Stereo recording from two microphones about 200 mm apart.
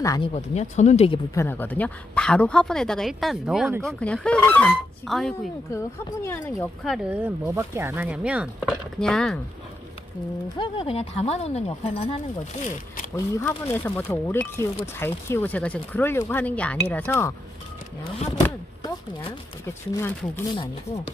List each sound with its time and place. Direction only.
0.0 s speech: 15° left (ahead or behind)
0.3 s speech: 35° left (ahead or behind)
1.3 s speech: 10° left (ahead or behind)
5.7 s speech: 15° left (ahead or behind)
6.8 s speech: 5° right (ahead or behind)
10.5 s speech: 25° left (ahead or behind)
13.1 s speech: 10° left (ahead or behind)
18.8 s speech: 20° left (ahead or behind)